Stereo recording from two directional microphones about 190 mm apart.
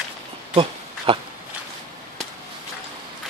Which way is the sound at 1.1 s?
30° right (ahead or behind).